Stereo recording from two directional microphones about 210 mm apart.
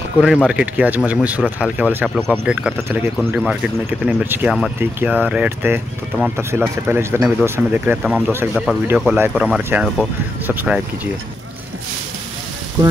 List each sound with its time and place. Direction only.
0.2 s speech: 5° right (ahead or behind)
2.0 s speech: 5° left (ahead or behind)
12.8 s speech: 20° right (ahead or behind)